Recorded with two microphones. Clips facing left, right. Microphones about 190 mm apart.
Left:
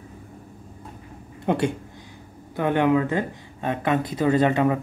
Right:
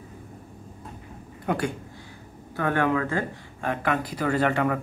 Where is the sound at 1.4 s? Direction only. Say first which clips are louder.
Left 4 dB; 25° left (ahead or behind).